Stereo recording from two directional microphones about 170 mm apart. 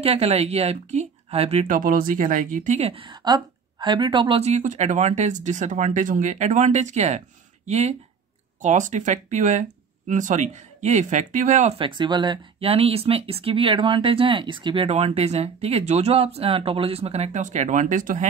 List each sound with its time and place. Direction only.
0.0 s speech: 35° right (ahead or behind)
1.8 s a woman's voice: 55° right (ahead or behind)
11.8 s speech: 25° right (ahead or behind); by 18.3 s 50° right (ahead or behind)